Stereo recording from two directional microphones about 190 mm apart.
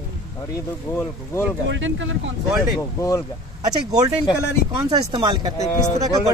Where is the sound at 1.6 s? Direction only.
85° right.